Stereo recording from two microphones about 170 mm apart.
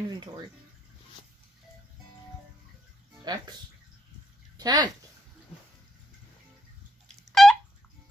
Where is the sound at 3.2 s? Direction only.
25° right (ahead or behind).